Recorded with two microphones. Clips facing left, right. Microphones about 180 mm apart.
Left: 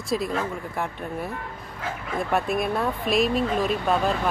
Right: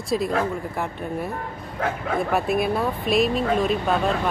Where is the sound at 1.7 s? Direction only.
60° right (ahead or behind).